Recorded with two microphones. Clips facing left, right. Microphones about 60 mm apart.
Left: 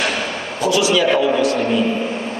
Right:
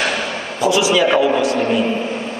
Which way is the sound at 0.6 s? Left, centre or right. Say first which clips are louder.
Right 1 dB; centre.